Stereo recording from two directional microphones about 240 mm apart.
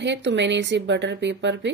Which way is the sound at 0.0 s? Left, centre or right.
Right.